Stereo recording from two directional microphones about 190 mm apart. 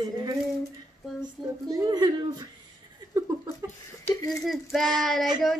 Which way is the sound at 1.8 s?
20° right (ahead or behind).